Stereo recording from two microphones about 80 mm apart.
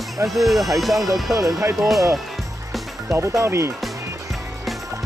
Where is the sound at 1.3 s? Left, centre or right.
Right.